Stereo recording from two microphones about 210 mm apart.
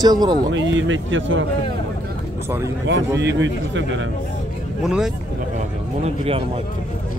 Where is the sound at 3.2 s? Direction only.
60° right (ahead or behind).